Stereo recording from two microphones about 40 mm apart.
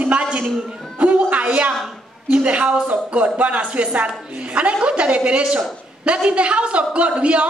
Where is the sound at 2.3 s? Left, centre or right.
Right.